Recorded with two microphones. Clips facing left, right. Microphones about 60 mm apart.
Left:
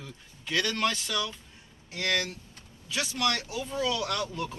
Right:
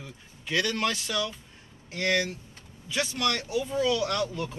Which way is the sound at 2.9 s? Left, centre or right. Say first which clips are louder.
Right 1 dB; centre.